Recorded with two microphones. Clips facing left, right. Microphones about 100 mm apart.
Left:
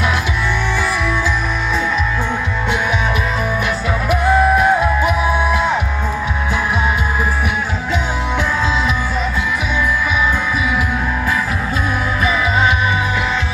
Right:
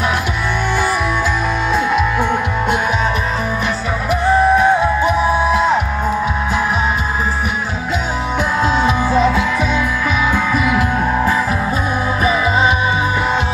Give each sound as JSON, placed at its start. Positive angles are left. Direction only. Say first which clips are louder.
{"t": 4.6, "sound": "music", "louder": "right 1 dB", "side_deg": -25}
{"t": 10.3, "sound": "music", "louder": "right 3 dB", "side_deg": -60}
{"t": 12.2, "sound": "music", "louder": "right 2 dB", "side_deg": -35}